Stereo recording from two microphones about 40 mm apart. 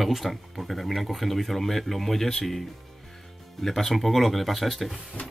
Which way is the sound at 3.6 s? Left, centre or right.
Centre.